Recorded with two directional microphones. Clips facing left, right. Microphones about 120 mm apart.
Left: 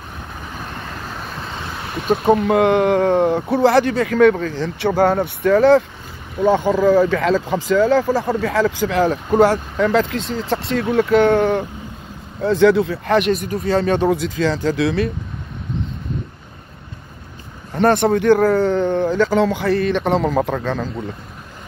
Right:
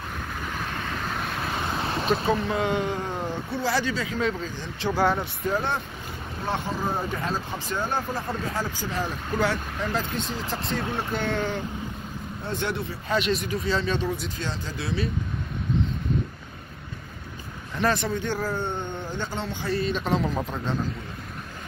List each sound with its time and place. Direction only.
0.8 s vehicle: centre (ahead or behind)
2.0 s speech: 55° left (ahead or behind)
4.9 s speech: 55° left (ahead or behind); by 5.9 s 90° left
6.9 s speech: 90° left
9.3 s speech: 60° left (ahead or behind)
12.4 s speech: 90° left; by 13.3 s 65° left (ahead or behind)
13.3 s speech: 50° left (ahead or behind); by 15.0 s 85° left
17.7 s speech: 55° left (ahead or behind); by 20.8 s 75° left (ahead or behind)